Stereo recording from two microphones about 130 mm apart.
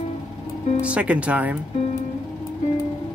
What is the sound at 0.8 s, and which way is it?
Speech, 10° right (ahead or behind).